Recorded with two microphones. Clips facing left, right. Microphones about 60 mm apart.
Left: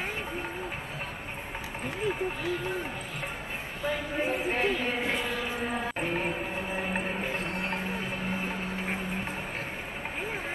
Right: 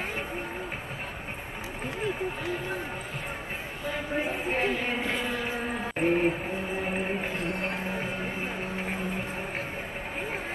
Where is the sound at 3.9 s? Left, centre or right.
Right.